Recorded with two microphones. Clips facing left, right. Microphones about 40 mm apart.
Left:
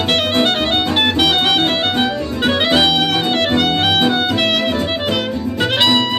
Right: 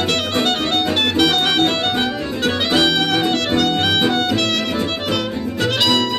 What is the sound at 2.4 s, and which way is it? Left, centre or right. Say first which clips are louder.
Music: left 3 dB; left.